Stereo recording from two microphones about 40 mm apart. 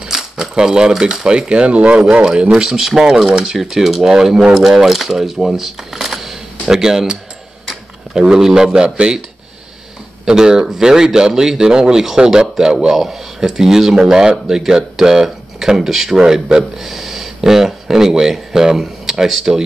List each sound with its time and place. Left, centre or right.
0.1 s typewriter: centre
0.7 s speech: centre
2.7 s speech: centre
8.2 s speech: centre
8.7 s speech: right
10.2 s speech: centre